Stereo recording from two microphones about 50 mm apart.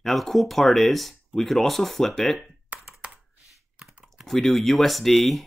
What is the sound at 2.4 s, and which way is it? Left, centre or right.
Computer keyboard, right.